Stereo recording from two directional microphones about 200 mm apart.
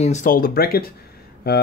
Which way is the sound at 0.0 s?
40° left (ahead or behind).